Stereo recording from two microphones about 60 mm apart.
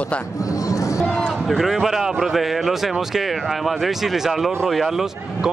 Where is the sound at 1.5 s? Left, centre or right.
Centre.